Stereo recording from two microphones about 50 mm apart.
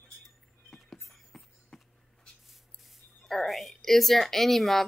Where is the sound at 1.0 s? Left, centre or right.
Centre.